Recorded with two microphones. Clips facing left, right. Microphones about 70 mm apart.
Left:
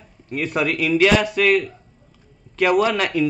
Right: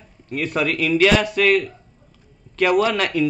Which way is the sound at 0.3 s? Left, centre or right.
Centre.